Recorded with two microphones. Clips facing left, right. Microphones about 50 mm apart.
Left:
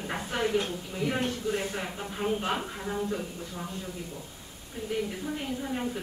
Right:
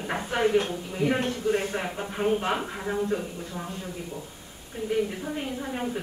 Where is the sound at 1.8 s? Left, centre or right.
Centre.